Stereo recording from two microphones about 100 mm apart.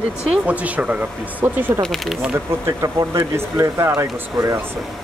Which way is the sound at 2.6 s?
30° right (ahead or behind).